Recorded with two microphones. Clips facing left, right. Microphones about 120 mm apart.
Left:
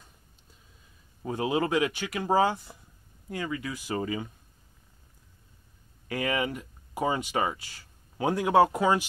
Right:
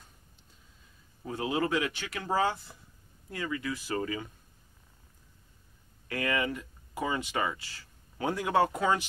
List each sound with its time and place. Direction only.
1.2 s speech: 20° left (ahead or behind)
2.7 s a sound: 20° left (ahead or behind)
3.3 s speech: 15° left (ahead or behind)
6.2 s speech: 15° left (ahead or behind)